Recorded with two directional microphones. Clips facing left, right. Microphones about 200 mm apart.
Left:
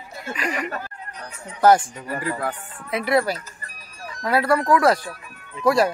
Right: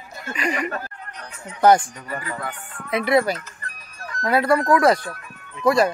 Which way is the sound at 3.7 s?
30° left (ahead or behind).